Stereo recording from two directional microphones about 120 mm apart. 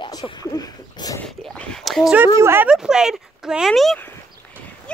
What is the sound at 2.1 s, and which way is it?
Speech, 20° right (ahead or behind).